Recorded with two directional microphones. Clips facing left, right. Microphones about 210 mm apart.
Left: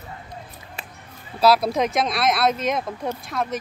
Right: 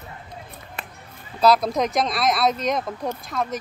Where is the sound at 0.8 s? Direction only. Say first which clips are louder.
Right 3 dB; 55° right (ahead or behind).